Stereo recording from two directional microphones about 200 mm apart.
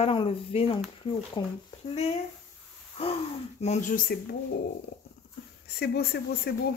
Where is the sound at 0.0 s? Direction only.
25° left (ahead or behind).